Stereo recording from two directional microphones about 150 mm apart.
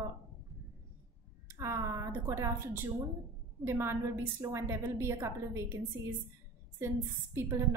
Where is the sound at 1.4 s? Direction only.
20° right (ahead or behind).